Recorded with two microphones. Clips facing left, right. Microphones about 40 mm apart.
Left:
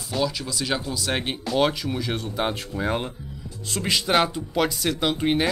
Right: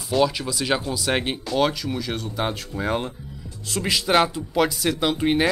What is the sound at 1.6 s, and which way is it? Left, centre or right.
Speech, centre.